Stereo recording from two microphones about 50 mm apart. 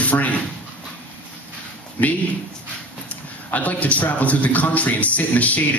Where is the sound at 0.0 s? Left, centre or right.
Left.